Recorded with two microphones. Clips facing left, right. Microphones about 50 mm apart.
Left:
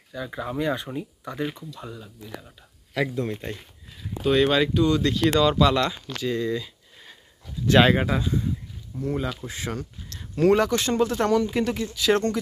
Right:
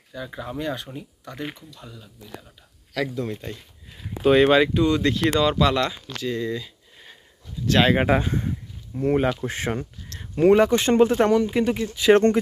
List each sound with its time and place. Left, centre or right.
0.1 s speech: centre; by 3.6 s left
4.2 s speech: centre
7.6 s speech: centre
8.0 s speech: right
10.3 s speech: centre
10.9 s speech: right
11.3 s speech: centre
11.9 s speech: right